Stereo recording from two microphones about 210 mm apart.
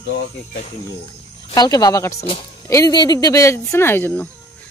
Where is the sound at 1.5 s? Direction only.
20° left (ahead or behind).